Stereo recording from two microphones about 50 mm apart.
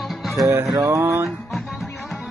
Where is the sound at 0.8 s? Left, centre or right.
Right.